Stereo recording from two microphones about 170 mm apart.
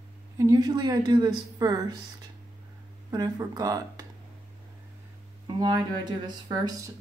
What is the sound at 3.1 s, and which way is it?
Speech, 20° right (ahead or behind).